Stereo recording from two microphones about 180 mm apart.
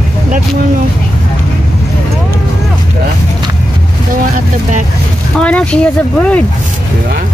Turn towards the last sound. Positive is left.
turn(degrees=5)  # may be behind; listen again after turning